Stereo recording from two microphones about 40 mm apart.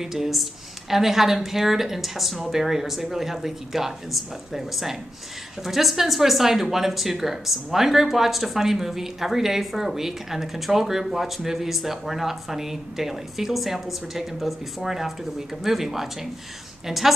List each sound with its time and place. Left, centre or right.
0.0 s speech: centre